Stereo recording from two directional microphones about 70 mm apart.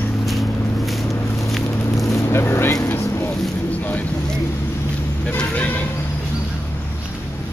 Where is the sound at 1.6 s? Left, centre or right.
Left.